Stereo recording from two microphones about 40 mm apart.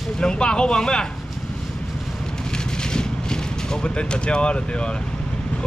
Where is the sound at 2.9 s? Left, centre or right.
Centre.